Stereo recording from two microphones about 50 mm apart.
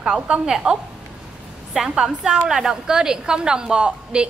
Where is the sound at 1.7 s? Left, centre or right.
Centre.